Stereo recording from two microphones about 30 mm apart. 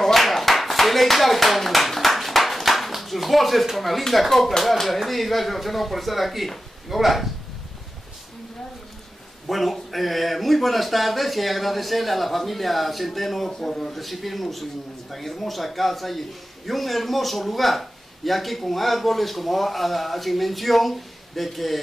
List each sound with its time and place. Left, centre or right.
0.0 s clapping: centre
3.7 s a man's voice: centre
9.5 s a man's voice: centre
13.5 s a man's voice: centre
13.7 s a man's voice: centre